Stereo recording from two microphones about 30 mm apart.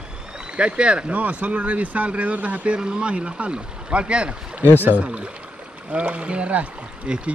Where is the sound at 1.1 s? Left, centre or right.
Right.